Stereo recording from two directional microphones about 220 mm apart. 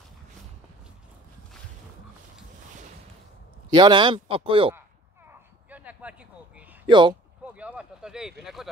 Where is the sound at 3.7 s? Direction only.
20° right (ahead or behind).